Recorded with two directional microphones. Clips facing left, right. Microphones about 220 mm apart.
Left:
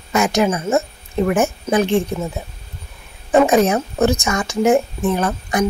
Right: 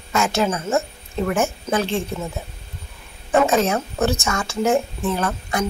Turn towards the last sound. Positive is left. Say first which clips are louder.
# left 4 dB
turn(degrees=15)  # may be behind; listen again after turning